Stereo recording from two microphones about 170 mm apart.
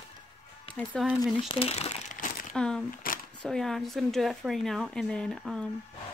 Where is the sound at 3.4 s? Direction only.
5° left (ahead or behind).